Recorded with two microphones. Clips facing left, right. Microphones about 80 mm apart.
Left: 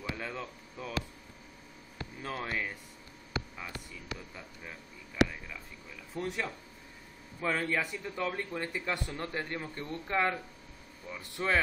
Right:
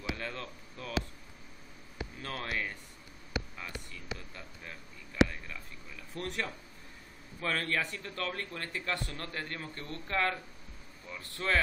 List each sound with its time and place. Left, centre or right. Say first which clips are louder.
0.1 s speech: right 1 dB; centre
2.2 s a man's voice: left 3 dB; centre
4.6 s a man's voice: left 1 dB; centre